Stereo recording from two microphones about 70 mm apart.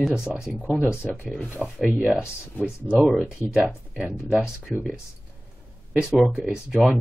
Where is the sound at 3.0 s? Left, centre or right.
Centre.